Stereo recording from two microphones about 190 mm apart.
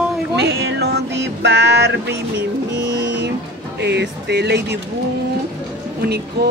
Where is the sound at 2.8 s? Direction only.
70° right (ahead or behind).